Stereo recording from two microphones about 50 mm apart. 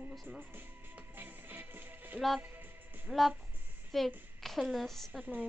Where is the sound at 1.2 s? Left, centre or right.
Right.